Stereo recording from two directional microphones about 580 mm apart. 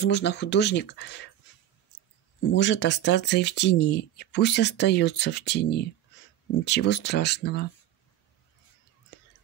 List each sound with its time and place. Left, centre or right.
0.0 s speech: centre
2.4 s speech: centre